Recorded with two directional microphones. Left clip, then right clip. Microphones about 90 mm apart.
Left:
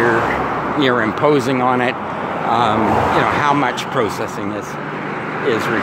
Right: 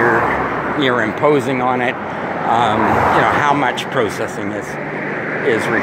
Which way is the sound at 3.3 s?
35° left (ahead or behind).